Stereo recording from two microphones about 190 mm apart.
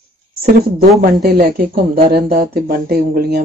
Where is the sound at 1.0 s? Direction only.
55° right (ahead or behind).